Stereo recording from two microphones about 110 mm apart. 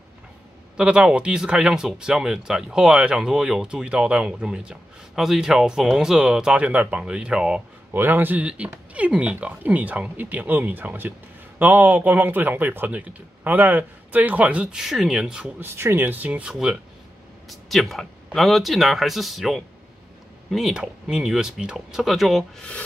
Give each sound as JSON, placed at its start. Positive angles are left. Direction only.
{"t": 0.7, "sound": "speech", "side_deg": -10}
{"t": 7.9, "sound": "speech", "side_deg": -20}
{"t": 15.6, "sound": "speech", "side_deg": -20}